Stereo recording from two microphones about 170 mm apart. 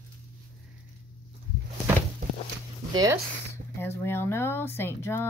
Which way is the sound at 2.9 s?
20° right (ahead or behind).